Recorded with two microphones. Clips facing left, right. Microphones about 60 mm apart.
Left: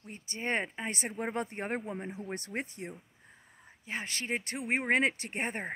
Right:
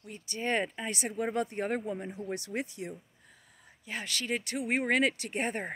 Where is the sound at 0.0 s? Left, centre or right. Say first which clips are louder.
Right 2 dB; left.